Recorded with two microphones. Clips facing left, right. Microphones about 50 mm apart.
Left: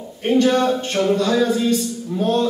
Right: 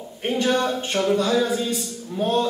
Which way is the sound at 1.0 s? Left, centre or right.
Left.